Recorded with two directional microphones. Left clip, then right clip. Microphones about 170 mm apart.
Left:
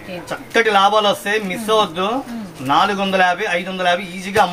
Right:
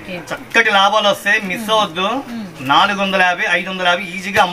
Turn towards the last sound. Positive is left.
turn(degrees=20)  # may be behind; listen again after turning